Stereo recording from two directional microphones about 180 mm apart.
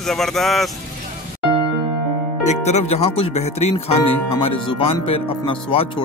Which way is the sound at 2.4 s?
35° left (ahead or behind).